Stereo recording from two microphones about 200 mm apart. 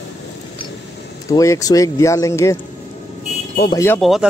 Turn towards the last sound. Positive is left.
turn(degrees=0)  # may be behind; listen again after turning